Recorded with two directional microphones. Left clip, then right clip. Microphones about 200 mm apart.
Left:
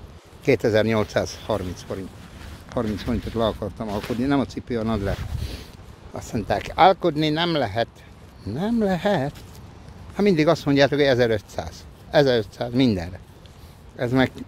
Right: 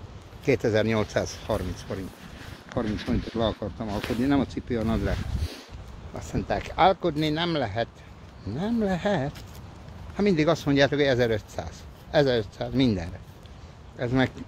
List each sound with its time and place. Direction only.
0.5 s speech: 35° left (ahead or behind)
6.1 s speech: 35° left (ahead or behind)